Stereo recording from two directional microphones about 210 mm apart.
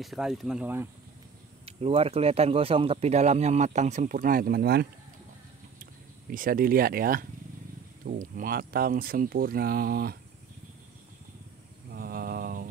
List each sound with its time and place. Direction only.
0.0 s speech: centre (ahead or behind)
1.7 s speech: 25° right (ahead or behind); by 4.8 s 50° right (ahead or behind)
6.3 s speech: 40° right (ahead or behind)
11.9 s mantra: 45° right (ahead or behind)